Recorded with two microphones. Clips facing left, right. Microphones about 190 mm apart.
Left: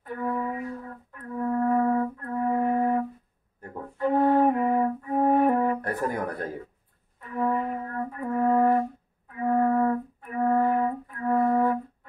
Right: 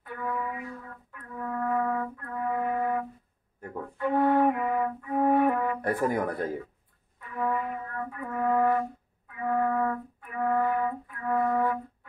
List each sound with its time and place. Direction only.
0.0 s wind instrument: 35° left (ahead or behind)
3.7 s flute: 35° left (ahead or behind)
5.9 s speech: 15° right (ahead or behind)
7.2 s music: 35° left (ahead or behind)
9.3 s flute: 40° left (ahead or behind)